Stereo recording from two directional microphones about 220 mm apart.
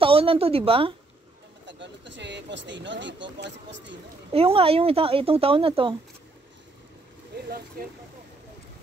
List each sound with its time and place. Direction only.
0.0 s speech: 25° right (ahead or behind)
1.7 s speech: 55° right (ahead or behind)
4.3 s speech: 25° right (ahead or behind)
7.8 s speech: 45° right (ahead or behind)